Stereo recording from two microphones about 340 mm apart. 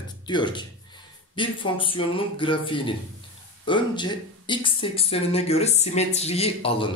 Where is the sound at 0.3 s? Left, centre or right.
Centre.